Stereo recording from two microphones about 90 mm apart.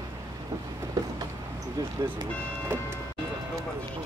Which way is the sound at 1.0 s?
45° right (ahead or behind).